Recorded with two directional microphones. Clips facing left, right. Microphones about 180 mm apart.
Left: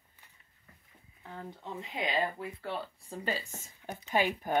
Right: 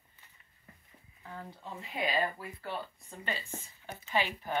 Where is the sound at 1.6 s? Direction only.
20° left (ahead or behind); by 4.6 s 50° left (ahead or behind).